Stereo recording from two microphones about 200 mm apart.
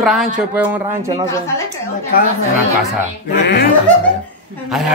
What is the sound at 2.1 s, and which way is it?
Speech, 50° left (ahead or behind).